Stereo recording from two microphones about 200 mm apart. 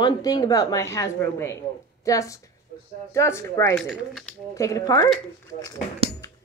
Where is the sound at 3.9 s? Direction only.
Centre (ahead or behind).